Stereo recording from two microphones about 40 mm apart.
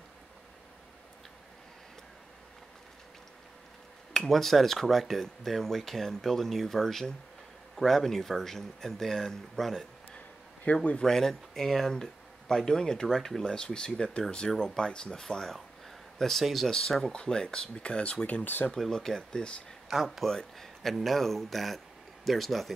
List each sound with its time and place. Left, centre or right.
4.3 s speech: centre
10.1 s a sound: left
11.0 s speech: centre
17.1 s speech: left
18.7 s speech: centre
19.1 s speech: centre
19.9 s speech: centre
20.2 s speech: centre